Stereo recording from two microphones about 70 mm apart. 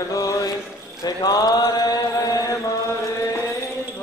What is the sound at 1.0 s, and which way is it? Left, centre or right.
Mantra, left.